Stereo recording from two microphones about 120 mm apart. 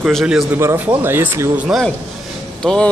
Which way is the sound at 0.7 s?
15° right (ahead or behind).